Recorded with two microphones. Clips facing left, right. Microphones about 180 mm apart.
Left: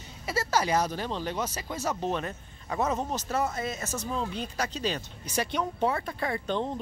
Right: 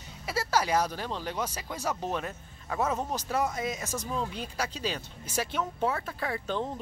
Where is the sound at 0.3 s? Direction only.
10° right (ahead or behind).